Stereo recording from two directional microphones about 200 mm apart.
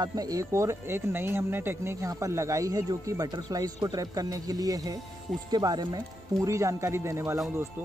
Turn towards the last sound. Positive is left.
turn(degrees=-15)  # may be behind; listen again after turning